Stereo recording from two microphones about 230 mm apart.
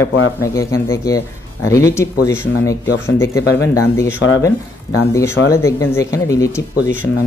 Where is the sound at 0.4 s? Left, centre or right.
Centre.